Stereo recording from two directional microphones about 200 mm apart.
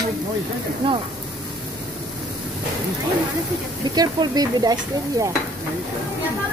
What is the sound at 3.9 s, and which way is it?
Stir, 20° right (ahead or behind).